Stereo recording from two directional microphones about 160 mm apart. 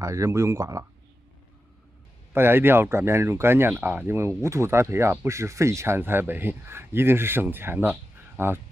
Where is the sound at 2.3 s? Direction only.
15° right (ahead or behind).